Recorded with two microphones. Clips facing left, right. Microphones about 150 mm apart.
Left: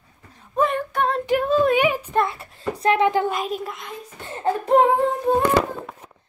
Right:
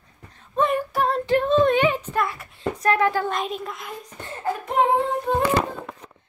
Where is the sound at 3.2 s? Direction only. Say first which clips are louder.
Left 2 dB; 5° left (ahead or behind).